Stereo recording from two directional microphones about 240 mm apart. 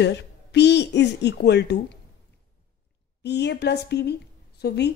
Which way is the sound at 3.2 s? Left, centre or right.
Left.